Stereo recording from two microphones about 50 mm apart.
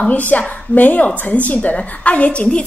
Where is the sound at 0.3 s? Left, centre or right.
Left.